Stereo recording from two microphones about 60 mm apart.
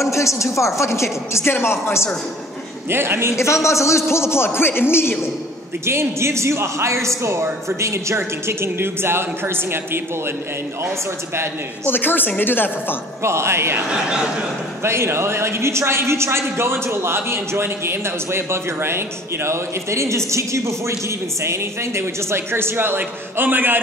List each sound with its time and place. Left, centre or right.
0.0 s speech: left
1.4 s a man's voice: left
2.9 s a woman's voice: right
3.3 s a man's voice: left
5.9 s a woman's voice: right
11.8 s a woman's voice: left
13.2 s a woman's voice: right
13.8 s speech: centre
14.8 s a woman's voice: right